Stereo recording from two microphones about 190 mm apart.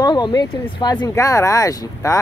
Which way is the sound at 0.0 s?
20° left (ahead or behind).